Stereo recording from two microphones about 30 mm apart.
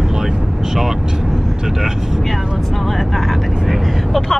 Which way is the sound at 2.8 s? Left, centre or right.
Centre.